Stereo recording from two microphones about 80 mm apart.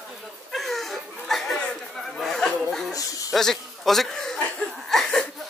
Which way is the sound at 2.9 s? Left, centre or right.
Left.